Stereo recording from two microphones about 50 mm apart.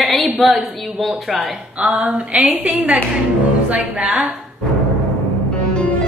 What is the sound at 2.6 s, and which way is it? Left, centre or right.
Speech, right.